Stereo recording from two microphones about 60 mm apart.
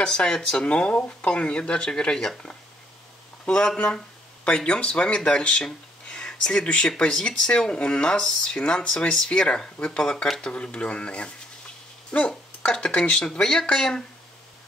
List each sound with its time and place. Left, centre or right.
0.0 s speech: centre